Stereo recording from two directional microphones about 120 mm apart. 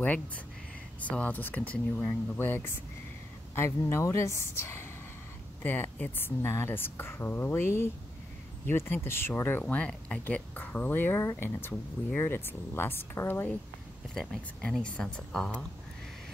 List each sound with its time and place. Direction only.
0.0 s speech: 10° left (ahead or behind)
14.1 s speech: 5° left (ahead or behind)